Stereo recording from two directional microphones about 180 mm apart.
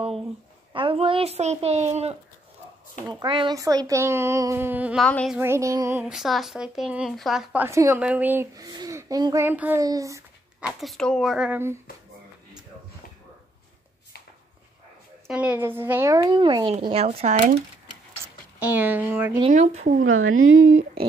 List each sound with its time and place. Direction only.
0.7 s a woman's voice: 30° right (ahead or behind)
3.1 s a child's voice: 25° right (ahead or behind); by 5.0 s 10° right (ahead or behind)
5.0 s speech: 5° left (ahead or behind)
5.4 s a child's voice: 15° right (ahead or behind)
6.0 s a child's voice: centre (ahead or behind); by 10.2 s 20° right (ahead or behind)
10.6 s speech: centre (ahead or behind)
15.2 s a child's voice: 10° right (ahead or behind); by 16.7 s 25° right (ahead or behind)
16.9 s speech: 35° right (ahead or behind)
18.6 s a child's voice: 10° right (ahead or behind)
19.5 s speech: 40° right (ahead or behind)
20.1 s speech: 90° right